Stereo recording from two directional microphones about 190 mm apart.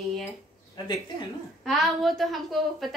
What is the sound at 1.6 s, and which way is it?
A woman's voice, centre (ahead or behind).